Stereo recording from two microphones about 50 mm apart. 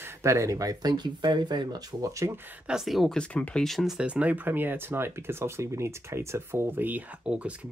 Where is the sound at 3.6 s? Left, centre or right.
Centre.